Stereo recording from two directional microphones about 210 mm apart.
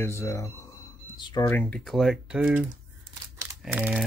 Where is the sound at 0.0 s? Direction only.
10° left (ahead or behind); by 2.6 s 5° right (ahead or behind).